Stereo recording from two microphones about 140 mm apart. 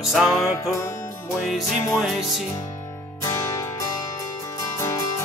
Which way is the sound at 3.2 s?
20° left (ahead or behind).